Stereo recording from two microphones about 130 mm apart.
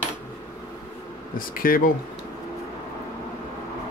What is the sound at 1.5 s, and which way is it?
Speech, 90° left.